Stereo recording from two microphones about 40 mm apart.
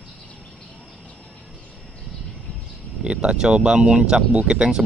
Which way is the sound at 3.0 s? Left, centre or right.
Right.